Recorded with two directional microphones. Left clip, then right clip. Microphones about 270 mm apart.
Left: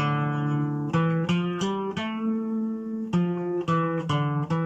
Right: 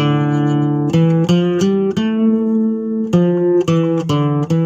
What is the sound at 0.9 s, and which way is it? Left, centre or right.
Music, right.